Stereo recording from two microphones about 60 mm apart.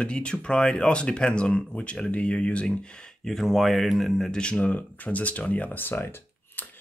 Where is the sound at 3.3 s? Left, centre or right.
Centre.